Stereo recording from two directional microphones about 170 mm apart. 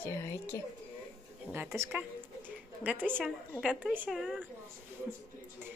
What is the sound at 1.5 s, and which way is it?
A woman's voice, 15° right (ahead or behind).